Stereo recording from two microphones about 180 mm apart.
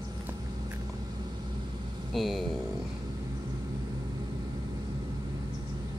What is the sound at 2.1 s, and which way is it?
Speech, centre (ahead or behind).